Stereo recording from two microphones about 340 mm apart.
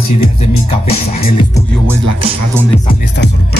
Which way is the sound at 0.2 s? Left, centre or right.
Centre.